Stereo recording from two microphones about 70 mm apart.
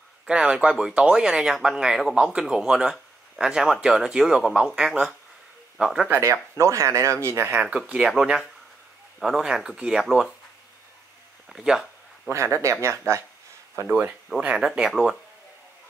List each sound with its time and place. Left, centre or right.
0.3 s speech: centre
6.1 s speech: right
7.5 s speech: centre
9.2 s speech: centre
11.4 s speech: centre
12.3 s speech: right
13.8 s speech: right
14.9 s speech: centre